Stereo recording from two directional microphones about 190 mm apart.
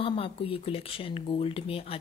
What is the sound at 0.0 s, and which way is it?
Speech, 30° left (ahead or behind).